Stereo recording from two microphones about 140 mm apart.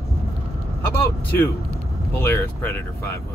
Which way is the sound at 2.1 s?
15° left (ahead or behind).